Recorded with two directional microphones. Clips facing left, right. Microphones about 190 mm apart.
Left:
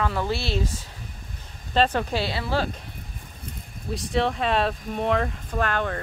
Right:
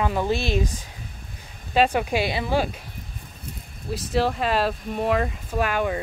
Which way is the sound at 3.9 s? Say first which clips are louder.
Right 1 dB; centre (ahead or behind).